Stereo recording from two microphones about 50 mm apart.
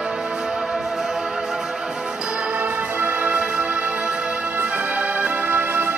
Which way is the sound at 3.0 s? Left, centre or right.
Right.